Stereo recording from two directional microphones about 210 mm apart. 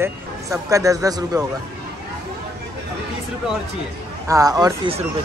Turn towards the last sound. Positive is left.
turn(degrees=-20)  # may be behind; listen again after turning